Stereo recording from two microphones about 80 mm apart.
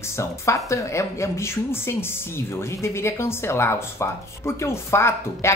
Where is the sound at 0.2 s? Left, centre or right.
Left.